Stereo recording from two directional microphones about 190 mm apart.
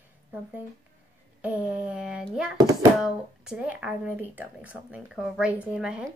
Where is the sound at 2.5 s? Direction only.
15° right (ahead or behind).